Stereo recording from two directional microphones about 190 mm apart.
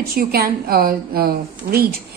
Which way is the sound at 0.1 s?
50° right (ahead or behind).